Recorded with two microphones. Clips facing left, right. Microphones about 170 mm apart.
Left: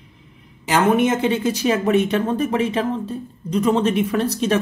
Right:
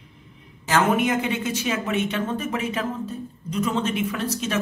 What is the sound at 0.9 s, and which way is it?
Speech, 25° left (ahead or behind).